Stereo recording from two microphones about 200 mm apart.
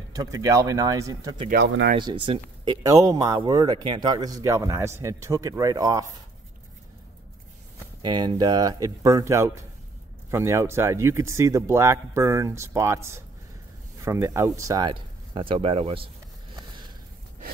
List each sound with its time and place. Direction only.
0.1 s speech: 15° right (ahead or behind)
1.5 s speech: 55° right (ahead or behind)
2.0 s speech: 25° right (ahead or behind)
8.0 s speech: 20° right (ahead or behind)